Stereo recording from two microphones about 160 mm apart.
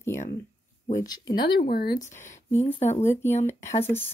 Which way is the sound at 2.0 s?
15° left (ahead or behind).